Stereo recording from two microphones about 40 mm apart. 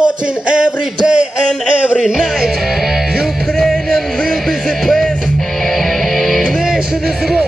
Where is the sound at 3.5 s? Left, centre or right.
Centre.